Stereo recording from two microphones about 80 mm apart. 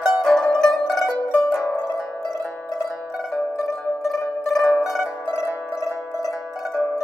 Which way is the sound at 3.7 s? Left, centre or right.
Centre.